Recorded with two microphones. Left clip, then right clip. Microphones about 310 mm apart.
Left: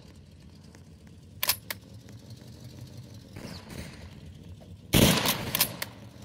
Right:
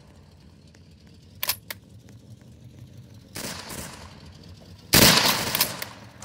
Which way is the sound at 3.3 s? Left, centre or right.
Right.